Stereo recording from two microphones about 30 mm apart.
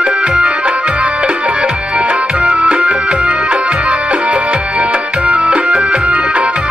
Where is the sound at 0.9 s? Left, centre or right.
Right.